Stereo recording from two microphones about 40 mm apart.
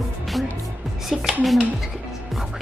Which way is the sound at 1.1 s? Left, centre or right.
Centre.